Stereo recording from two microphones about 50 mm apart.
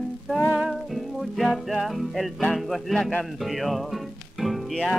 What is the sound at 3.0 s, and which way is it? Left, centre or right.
Speech, left.